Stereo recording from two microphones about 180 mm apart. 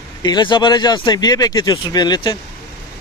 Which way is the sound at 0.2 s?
25° left (ahead or behind).